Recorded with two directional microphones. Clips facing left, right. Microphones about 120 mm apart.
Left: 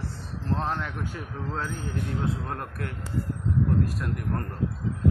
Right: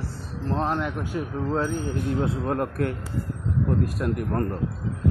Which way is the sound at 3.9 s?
10° right (ahead or behind).